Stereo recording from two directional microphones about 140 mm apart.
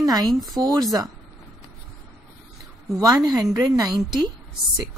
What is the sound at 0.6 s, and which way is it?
Speech, 25° right (ahead or behind).